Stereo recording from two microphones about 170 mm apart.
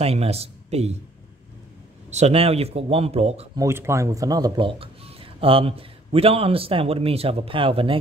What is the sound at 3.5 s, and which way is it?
Speech, 15° right (ahead or behind).